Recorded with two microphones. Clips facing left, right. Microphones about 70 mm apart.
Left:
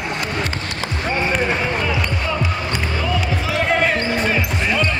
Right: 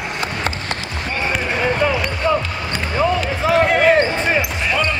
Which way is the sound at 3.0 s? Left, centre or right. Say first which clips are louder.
Right 8 dB; right.